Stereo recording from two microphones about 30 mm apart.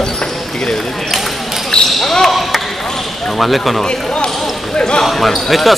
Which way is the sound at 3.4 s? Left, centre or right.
Centre.